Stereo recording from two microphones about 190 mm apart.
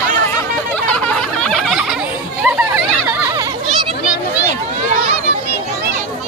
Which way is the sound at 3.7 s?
5° right (ahead or behind).